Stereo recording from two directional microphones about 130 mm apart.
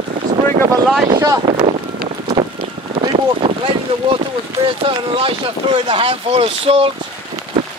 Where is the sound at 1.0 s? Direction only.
30° right (ahead or behind).